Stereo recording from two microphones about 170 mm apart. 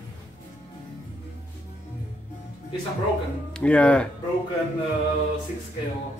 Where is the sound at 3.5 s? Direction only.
5° left (ahead or behind).